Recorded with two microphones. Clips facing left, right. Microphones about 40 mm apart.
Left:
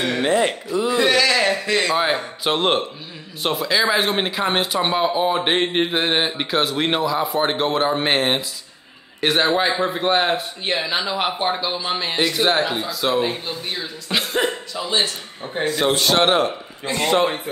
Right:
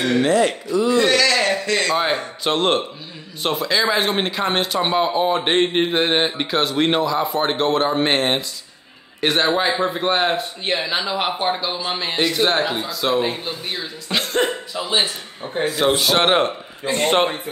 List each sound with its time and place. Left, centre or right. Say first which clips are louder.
0.2 s speech: even; left
0.7 s a man's voice: right 1 dB; centre
14.7 s a man's voice: right 1 dB; centre
16.3 s a man's voice: right 1 dB; right